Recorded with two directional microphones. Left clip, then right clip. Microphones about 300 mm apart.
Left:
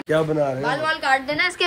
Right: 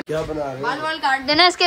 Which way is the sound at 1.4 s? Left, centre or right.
Centre.